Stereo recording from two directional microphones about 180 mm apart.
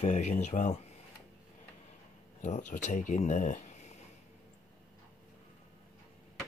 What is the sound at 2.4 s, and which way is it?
Speech, 40° left (ahead or behind).